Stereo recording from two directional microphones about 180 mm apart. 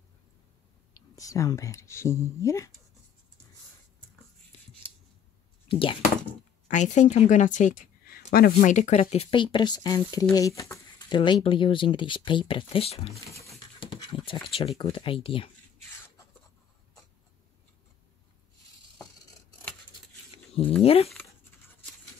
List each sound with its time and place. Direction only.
1.1 s speech: 20° left (ahead or behind)
5.7 s speech: 30° left (ahead or behind)
6.7 s a woman's voice: 40° left (ahead or behind)
13.7 s a sound: 25° left (ahead or behind)
14.8 s speech: 30° left (ahead or behind)
20.8 s a woman's voice: 30° left (ahead or behind)